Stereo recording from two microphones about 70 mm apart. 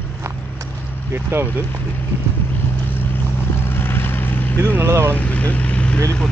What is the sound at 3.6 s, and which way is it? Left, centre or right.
Vehicle, left.